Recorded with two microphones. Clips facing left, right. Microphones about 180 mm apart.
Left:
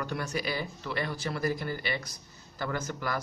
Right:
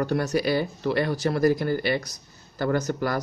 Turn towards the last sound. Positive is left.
turn(degrees=-35)  # may be behind; listen again after turning